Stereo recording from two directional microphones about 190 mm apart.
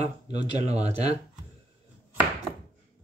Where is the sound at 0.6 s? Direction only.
35° right (ahead or behind).